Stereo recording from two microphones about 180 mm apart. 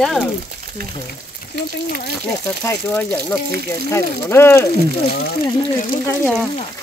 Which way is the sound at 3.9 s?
15° left (ahead or behind).